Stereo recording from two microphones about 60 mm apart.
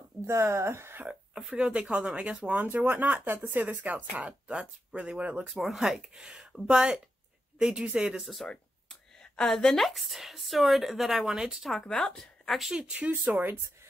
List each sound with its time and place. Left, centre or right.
0.3 s speech: right
1.3 s speech: centre
1.6 s speech: right
5.5 s speech: centre
8.2 s speech: centre
8.5 s a sound: centre
9.8 s speech: centre
11.8 s speech: centre
12.4 s speech: centre
12.7 s speech: centre
13.2 s speech: right